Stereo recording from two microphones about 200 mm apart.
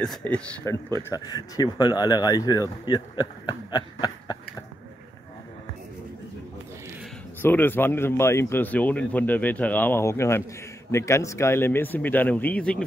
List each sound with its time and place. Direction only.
0.0 s a man's voice: 5° left (ahead or behind)
1.1 s speech: 20° left (ahead or behind)
7.4 s a man's voice: 10° left (ahead or behind)